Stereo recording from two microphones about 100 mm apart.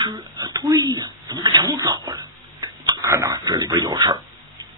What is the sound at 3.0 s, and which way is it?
Speech, 30° right (ahead or behind).